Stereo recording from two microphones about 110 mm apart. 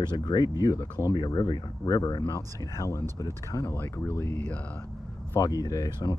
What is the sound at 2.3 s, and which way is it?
Speech, 25° left (ahead or behind).